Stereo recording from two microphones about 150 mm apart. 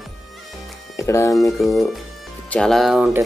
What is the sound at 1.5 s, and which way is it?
Speech, centre (ahead or behind).